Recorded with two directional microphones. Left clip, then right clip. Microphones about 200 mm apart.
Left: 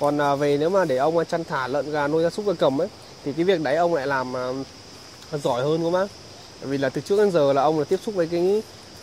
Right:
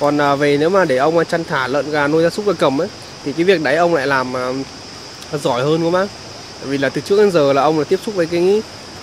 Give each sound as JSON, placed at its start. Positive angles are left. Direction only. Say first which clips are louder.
{"t": 0.0, "sound": "speech", "louder": "right 6 dB", "side_deg": 15}